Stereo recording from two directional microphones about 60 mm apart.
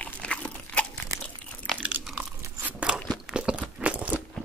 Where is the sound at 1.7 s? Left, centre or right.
Right.